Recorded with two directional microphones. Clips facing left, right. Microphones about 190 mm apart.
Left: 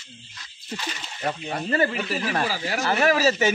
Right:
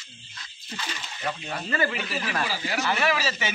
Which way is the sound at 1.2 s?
35° left (ahead or behind).